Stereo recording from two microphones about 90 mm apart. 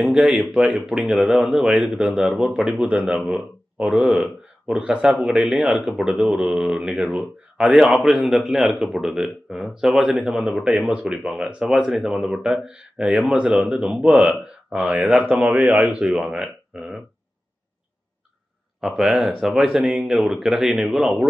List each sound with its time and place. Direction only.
0.0 s speech: centre (ahead or behind)
4.6 s speech: 10° right (ahead or behind)
15.9 s speech: 15° right (ahead or behind)
16.2 s speech: 5° right (ahead or behind)
18.8 s speech: 5° right (ahead or behind)